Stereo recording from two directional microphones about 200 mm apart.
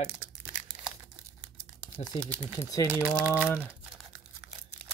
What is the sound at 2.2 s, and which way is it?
Speech, 15° right (ahead or behind).